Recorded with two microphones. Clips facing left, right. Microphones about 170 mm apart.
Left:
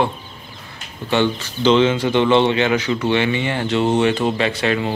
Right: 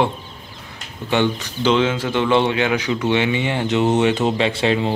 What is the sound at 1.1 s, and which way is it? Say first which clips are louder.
Speech: left 1 dB; 15° right (ahead or behind).